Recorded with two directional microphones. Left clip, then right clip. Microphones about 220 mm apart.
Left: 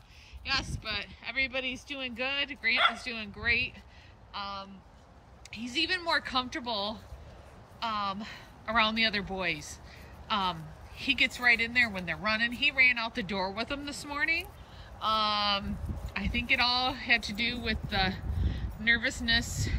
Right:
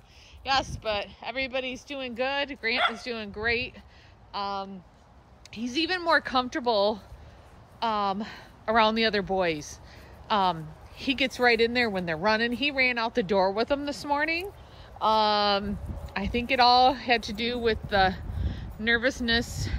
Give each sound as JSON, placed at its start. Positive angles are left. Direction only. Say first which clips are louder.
{"t": 0.4, "sound": "speech", "louder": "right 6 dB", "side_deg": -10}
{"t": 2.7, "sound": "speech", "louder": "even", "side_deg": -40}
{"t": 3.0, "sound": "speech", "louder": "right 5 dB", "side_deg": -10}